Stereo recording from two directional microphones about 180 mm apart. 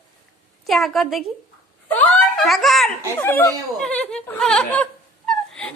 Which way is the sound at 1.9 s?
10° left (ahead or behind).